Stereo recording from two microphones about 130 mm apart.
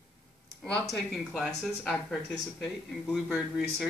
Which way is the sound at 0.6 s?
5° left (ahead or behind).